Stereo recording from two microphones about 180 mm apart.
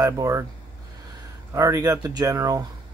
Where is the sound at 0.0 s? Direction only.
20° right (ahead or behind).